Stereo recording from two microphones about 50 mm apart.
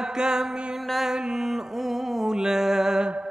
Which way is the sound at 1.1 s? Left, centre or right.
Centre.